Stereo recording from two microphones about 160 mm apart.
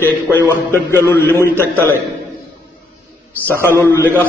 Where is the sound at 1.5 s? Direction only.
15° right (ahead or behind).